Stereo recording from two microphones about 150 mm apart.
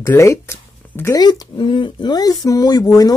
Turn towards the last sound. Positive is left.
turn(degrees=25)  # may be behind; listen again after turning